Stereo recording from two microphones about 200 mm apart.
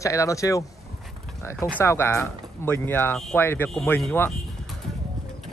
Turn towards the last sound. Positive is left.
turn(degrees=5)  # may be behind; listen again after turning